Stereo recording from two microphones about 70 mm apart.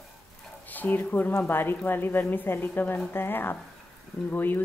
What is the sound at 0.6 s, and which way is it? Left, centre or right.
A woman's voice, left.